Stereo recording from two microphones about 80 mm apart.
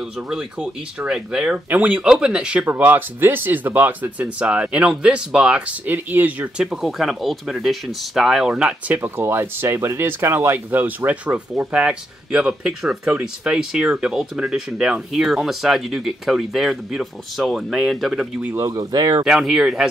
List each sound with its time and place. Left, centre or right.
0.3 s speech: centre
2.6 s speech: right
5.9 s speech: right
6.6 s speech: centre
18.6 s speech: right
18.9 s speech: right
19.2 s speech: centre